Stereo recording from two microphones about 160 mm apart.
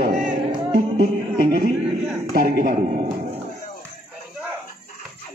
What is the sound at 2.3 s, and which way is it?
Speech, 60° right (ahead or behind).